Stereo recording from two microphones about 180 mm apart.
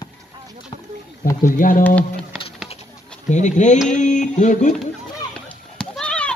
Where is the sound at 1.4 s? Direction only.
50° left (ahead or behind).